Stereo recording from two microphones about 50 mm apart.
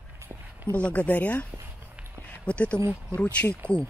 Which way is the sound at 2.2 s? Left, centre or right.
Left.